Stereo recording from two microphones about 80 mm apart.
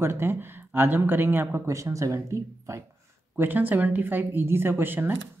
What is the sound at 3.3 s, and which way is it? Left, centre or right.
Speech, right.